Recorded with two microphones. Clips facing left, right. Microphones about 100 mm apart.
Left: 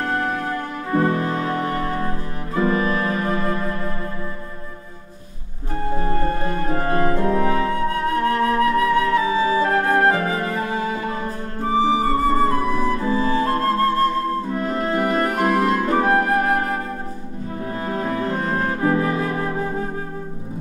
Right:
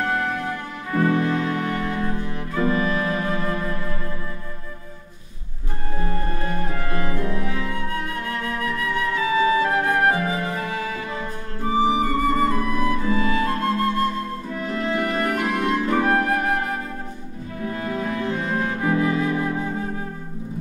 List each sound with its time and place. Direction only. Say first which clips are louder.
0.1 s music: left 2 dB; 40° left (ahead or behind)
5.9 s music: left 4 dB; 35° left (ahead or behind)
11.6 s flute: left 2 dB; 35° left (ahead or behind)
14.5 s music: left 3 dB; 40° left (ahead or behind)
15.9 s flute: left 2 dB; 30° left (ahead or behind)
17.6 s music: left 1 dB; 35° left (ahead or behind)